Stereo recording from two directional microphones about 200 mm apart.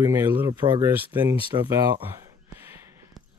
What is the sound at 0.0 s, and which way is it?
Speech, 10° right (ahead or behind).